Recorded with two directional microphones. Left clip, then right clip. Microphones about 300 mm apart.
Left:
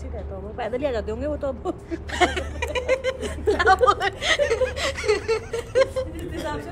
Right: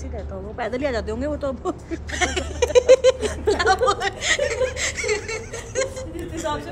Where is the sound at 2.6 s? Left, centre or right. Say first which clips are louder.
Right 11 dB; centre.